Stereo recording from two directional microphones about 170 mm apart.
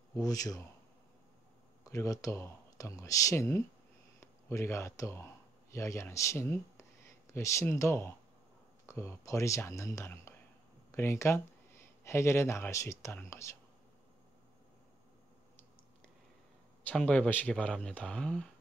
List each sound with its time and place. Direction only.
0.1 s a man's voice: 20° left (ahead or behind)
1.9 s speech: 20° left (ahead or behind)
16.8 s speech: 10° left (ahead or behind)